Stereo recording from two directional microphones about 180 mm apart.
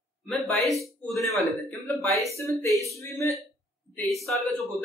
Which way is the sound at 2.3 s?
15° left (ahead or behind).